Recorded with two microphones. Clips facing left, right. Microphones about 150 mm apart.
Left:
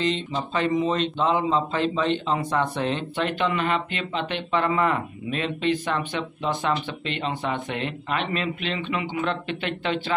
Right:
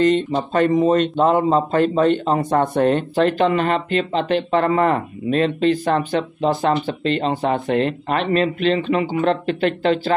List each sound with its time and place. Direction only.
0.0 s speech: 50° right (ahead or behind)